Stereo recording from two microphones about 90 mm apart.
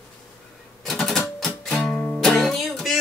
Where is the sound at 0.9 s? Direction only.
5° left (ahead or behind).